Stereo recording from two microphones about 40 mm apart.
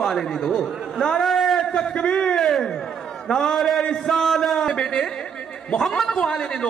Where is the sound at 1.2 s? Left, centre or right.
Centre.